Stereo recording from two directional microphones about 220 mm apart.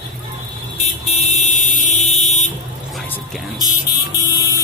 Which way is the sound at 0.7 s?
30° left (ahead or behind).